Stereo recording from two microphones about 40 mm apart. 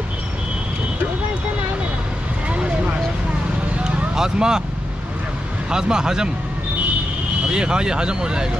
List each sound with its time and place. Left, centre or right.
4.1 s speech: centre
5.7 s speech: centre
7.4 s speech: centre